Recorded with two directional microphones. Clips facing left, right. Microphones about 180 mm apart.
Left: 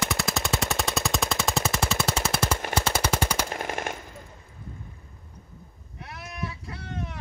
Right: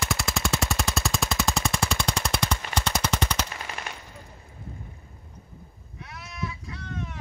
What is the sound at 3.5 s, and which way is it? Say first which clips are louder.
Machine gun: left 7 dB; 50° left (ahead or behind).